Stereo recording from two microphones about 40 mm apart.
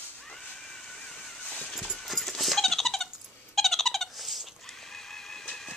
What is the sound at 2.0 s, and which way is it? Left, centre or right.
Dog, centre.